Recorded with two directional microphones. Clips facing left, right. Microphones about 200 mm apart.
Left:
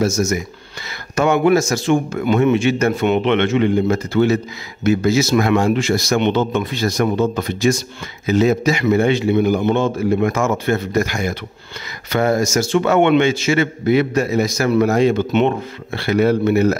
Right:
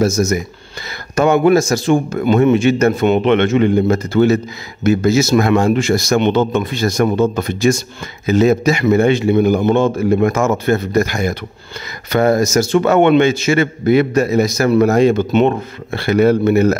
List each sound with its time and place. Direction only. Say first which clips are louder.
0.0 s a man's voice: right 3 dB; 35° right (ahead or behind)